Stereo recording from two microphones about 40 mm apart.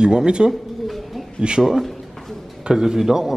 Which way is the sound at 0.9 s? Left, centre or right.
Centre.